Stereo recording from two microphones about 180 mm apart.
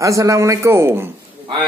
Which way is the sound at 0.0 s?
15° right (ahead or behind).